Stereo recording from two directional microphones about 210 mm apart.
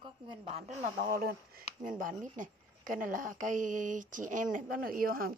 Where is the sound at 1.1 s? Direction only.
45° right (ahead or behind).